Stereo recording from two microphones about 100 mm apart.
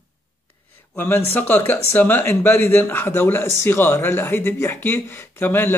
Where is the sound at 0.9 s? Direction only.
20° left (ahead or behind).